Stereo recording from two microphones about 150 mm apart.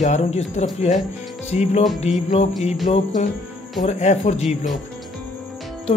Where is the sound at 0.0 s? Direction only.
45° left (ahead or behind).